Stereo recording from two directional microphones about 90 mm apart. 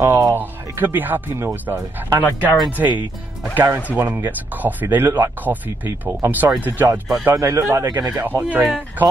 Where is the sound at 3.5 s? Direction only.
30° right (ahead or behind).